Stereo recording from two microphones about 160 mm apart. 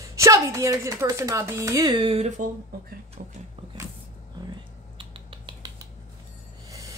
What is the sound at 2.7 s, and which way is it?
Speech, 75° right (ahead or behind).